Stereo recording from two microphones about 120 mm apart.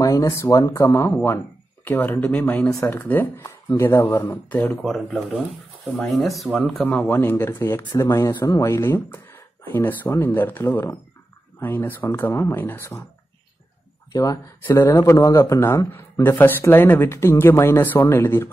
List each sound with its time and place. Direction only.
0.0 s speech: 25° left (ahead or behind)
2.7 s speech: 25° left (ahead or behind); by 6.6 s centre (ahead or behind)
6.8 s speech: 15° left (ahead or behind)
8.3 s speech: 35° left (ahead or behind)
8.5 s speech: 25° left (ahead or behind)
14.1 s speech: 30° left (ahead or behind)